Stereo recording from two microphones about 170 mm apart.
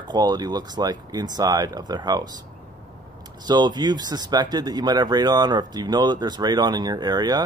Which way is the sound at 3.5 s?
25° right (ahead or behind).